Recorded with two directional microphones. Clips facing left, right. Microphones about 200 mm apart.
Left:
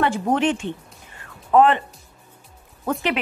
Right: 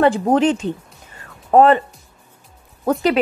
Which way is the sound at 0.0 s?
35° right (ahead or behind).